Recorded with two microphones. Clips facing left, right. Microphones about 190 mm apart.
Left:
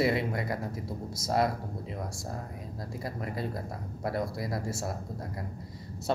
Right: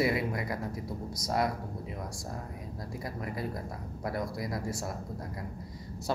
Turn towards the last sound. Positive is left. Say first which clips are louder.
# left 1 dB
turn(degrees=25)  # may be behind; listen again after turning